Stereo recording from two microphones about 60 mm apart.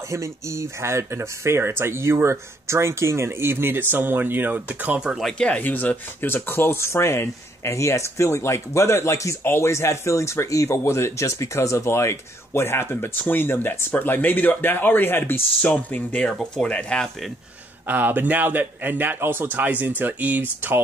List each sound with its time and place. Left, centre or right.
0.1 s speech: right
5.6 s speech: left
9.4 s speech: left
9.7 s speech: left
10.8 s speech: left
15.6 s speech: left
17.8 s a man's voice: right